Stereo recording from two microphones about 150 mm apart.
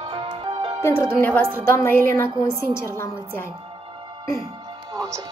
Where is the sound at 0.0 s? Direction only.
35° right (ahead or behind).